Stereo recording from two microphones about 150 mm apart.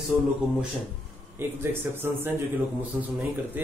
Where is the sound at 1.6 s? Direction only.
15° right (ahead or behind).